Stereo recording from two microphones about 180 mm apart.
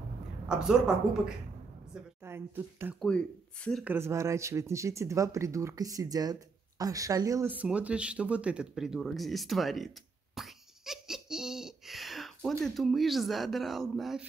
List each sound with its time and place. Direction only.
0.5 s a woman's voice: 5° right (ahead or behind)
2.2 s speech: 15° right (ahead or behind)